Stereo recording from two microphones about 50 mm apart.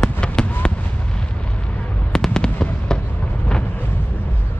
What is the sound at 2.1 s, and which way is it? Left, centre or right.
Fireworks, centre.